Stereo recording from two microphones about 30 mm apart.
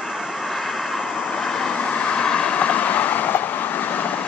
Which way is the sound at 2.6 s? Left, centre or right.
Left.